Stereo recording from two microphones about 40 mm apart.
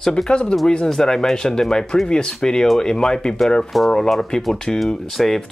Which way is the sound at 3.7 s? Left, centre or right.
Centre.